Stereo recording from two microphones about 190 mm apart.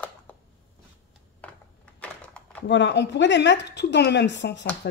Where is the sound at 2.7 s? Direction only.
65° left (ahead or behind).